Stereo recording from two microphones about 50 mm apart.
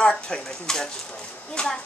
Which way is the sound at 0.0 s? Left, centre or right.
Left.